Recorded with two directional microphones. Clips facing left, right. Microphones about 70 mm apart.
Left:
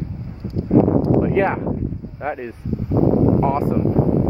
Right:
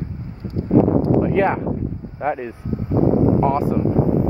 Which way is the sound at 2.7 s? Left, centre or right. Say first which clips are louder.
Even; right.